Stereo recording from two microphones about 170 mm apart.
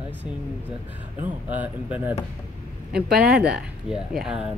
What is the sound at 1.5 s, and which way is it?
Speech, 10° right (ahead or behind).